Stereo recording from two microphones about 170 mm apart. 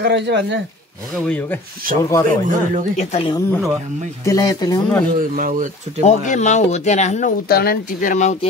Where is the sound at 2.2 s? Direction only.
50° right (ahead or behind).